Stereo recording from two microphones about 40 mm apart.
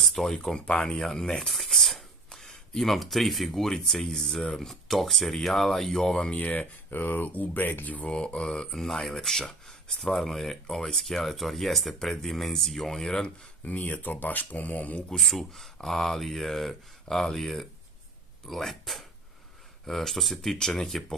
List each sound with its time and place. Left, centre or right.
0.0 s speech: centre
0.7 s speech: left
1.0 s speech: centre
1.7 s a sound: centre
2.8 s speech: centre
6.3 s speech: left
8.4 s speech: centre
13.7 s speech: left
13.9 s speech: left
15.1 s speech: centre